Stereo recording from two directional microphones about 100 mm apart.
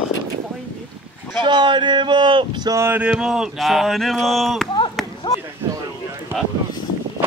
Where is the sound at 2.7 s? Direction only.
25° right (ahead or behind).